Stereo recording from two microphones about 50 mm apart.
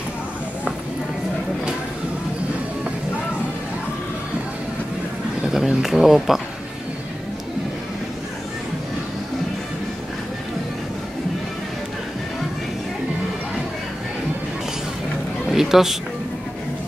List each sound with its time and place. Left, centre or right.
5.5 s speech: centre
15.4 s music: centre